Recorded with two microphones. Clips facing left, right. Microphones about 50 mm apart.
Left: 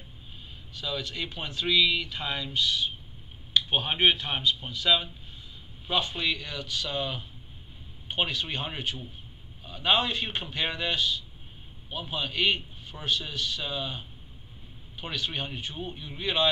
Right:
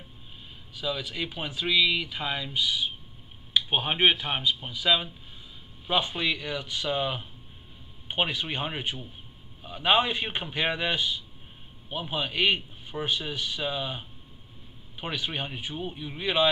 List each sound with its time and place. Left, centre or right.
0.7 s speech: centre